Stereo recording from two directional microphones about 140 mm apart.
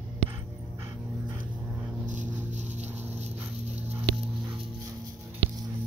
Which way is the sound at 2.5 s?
55° right (ahead or behind).